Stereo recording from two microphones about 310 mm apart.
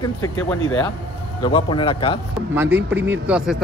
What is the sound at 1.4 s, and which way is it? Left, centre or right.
Speech, centre.